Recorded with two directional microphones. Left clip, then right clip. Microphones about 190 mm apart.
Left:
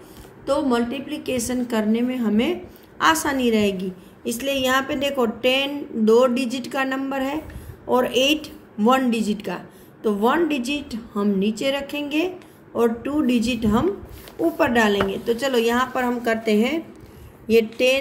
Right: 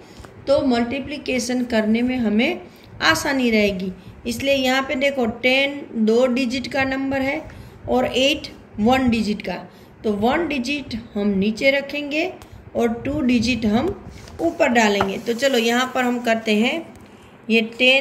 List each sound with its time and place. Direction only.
0.5 s a woman's voice: 45° left (ahead or behind)